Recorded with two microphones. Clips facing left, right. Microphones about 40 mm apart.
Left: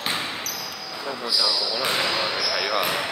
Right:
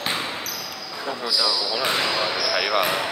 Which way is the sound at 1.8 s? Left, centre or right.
Centre.